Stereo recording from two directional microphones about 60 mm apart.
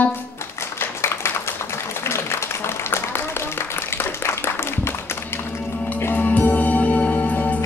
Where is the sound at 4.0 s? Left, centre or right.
Left.